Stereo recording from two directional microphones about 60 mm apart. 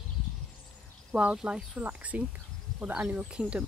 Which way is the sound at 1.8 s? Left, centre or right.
Right.